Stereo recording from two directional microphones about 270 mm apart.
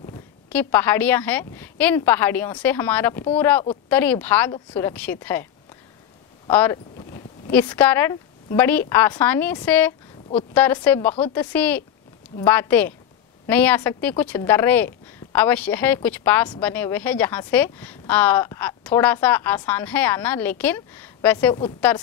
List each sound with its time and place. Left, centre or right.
0.1 s speech: centre
6.5 s speech: centre